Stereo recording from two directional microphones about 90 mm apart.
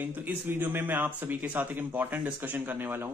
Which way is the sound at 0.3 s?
20° right (ahead or behind).